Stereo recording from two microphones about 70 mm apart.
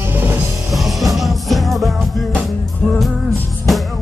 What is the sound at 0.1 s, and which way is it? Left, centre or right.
Music, right.